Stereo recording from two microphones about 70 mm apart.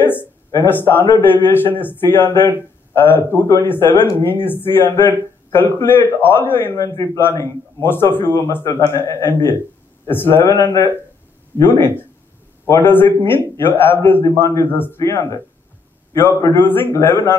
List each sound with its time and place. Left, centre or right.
0.0 s a sound: left
0.7 s speech: left
6.8 s a man's voice: left
7.8 s speech: left
11.8 s a man's voice: left
12.9 s a man's voice: left
16.5 s speech: left